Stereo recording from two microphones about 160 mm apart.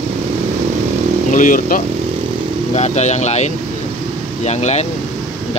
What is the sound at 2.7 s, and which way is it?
Speech, 45° left (ahead or behind).